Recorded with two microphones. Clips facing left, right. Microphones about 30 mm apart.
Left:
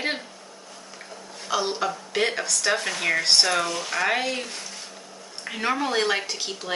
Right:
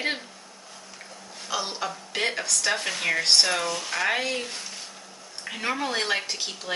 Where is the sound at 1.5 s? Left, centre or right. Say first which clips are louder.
Left 5 dB; centre.